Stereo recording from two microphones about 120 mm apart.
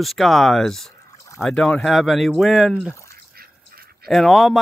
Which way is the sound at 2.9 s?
25° left (ahead or behind).